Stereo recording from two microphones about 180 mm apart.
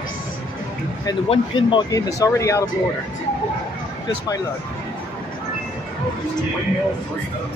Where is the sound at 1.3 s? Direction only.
30° left (ahead or behind).